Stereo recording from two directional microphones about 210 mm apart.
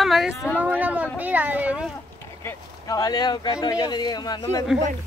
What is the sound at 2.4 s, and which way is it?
Speech, 15° left (ahead or behind).